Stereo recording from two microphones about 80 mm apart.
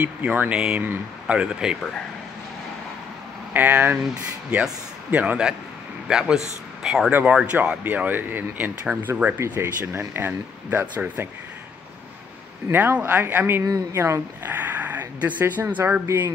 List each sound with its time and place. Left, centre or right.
0.0 s speech: centre
3.5 s a man's voice: right; by 7.1 s centre
7.1 s speech: right
9.4 s speech: right
12.7 s speech: right